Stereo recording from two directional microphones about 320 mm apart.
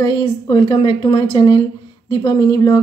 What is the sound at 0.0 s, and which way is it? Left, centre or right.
Speech, centre.